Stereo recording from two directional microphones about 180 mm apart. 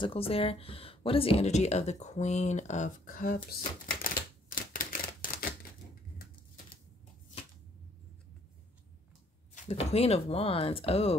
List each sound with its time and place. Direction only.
0.0 s speech: 30° left (ahead or behind); by 3.3 s 50° left (ahead or behind)
4.0 s typewriter: 50° left (ahead or behind)
9.7 s speech: 35° left (ahead or behind)